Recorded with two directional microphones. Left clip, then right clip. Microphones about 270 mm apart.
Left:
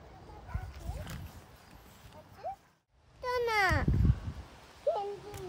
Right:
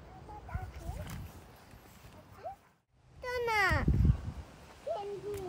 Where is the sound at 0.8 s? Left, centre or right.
Centre.